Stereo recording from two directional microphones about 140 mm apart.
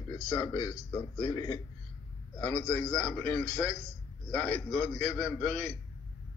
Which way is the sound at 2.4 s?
10° left (ahead or behind).